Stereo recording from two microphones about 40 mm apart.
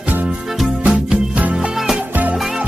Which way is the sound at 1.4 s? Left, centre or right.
Right.